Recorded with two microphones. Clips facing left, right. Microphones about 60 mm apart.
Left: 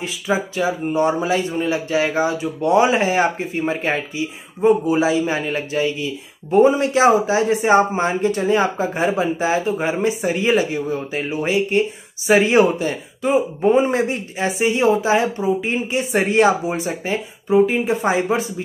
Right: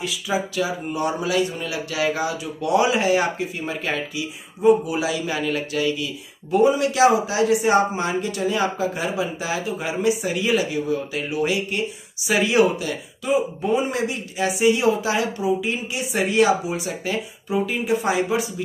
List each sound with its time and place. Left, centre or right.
0.3 s a man's voice: left